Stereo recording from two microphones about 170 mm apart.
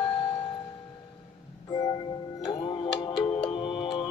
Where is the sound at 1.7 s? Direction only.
20° left (ahead or behind).